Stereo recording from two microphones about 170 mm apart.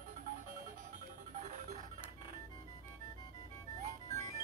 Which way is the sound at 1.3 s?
45° right (ahead or behind).